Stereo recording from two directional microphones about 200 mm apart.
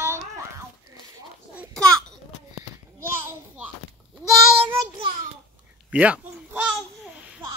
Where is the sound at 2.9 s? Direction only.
10° right (ahead or behind).